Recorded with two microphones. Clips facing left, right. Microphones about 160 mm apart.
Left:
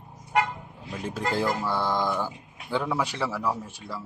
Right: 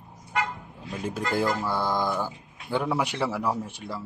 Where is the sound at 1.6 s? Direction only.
10° right (ahead or behind).